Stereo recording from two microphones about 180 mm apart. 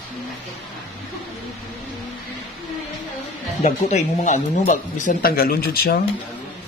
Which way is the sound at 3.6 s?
40° left (ahead or behind).